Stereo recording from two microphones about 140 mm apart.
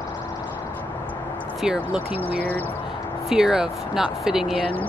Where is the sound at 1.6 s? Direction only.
10° right (ahead or behind).